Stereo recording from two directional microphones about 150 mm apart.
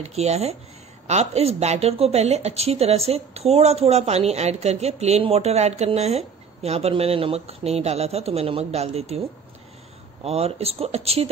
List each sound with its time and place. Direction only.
0.0 s a woman's voice: 45° right (ahead or behind)
10.2 s speech: 40° right (ahead or behind)